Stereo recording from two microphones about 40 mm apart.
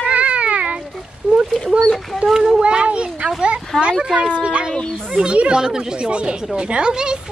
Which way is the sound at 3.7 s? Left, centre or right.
Centre.